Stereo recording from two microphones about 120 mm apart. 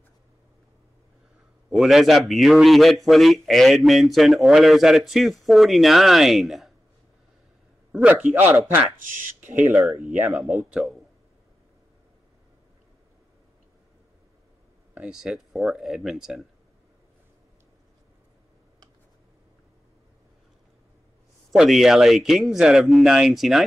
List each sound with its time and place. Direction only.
1.7 s a man's voice: centre (ahead or behind)
7.9 s a man's voice: 10° right (ahead or behind)
10.0 s a man's voice: 5° right (ahead or behind)
15.0 s a man's voice: 5° right (ahead or behind)
21.5 s a man's voice: centre (ahead or behind)